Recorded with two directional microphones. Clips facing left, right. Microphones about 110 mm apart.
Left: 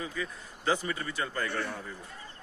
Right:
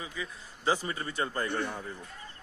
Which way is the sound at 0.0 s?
15° right (ahead or behind).